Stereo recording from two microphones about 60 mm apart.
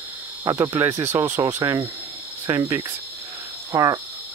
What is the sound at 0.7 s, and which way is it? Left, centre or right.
Speech, right.